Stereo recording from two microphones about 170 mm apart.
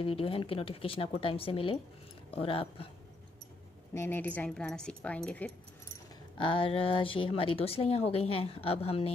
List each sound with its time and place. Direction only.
0.0 s speech: 30° left (ahead or behind)
3.9 s speech: 15° left (ahead or behind)
6.3 s speech: 30° left (ahead or behind)